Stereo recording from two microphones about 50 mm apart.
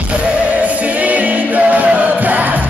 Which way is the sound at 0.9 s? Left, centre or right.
Right.